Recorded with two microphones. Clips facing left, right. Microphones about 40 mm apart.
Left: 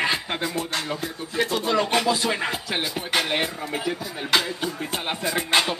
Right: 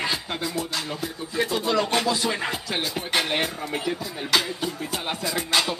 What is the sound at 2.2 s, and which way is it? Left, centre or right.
Music, centre.